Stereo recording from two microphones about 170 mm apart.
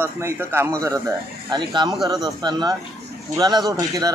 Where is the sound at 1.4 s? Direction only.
25° right (ahead or behind).